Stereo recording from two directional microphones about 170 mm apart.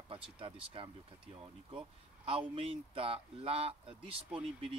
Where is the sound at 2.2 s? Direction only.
30° right (ahead or behind).